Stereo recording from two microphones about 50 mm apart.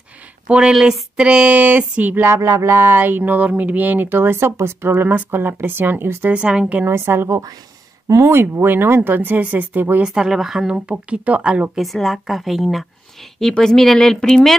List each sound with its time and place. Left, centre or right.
0.5 s speech: right
2.3 s a sound: right
2.9 s speech: right
6.3 s speech: right
6.9 s a woman's voice: right
8.6 s speech: right
10.0 s speech: centre
10.7 s speech: right
11.8 s a woman's voice: centre
13.4 s speech: centre